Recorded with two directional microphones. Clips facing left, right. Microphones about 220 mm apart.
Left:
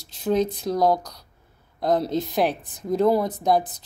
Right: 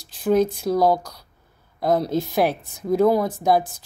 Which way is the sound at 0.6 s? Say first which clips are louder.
Right 2 dB; 5° right (ahead or behind).